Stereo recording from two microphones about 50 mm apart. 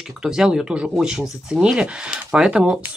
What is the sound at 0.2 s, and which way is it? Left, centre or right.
Speech, centre.